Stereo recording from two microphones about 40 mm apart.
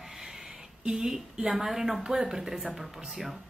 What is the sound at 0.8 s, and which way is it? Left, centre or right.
A woman's voice, centre.